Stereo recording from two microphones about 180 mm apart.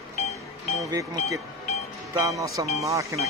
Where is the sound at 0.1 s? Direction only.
40° left (ahead or behind).